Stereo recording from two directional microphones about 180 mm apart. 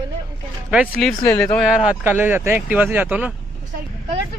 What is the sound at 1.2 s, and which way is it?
Speech, 10° left (ahead or behind).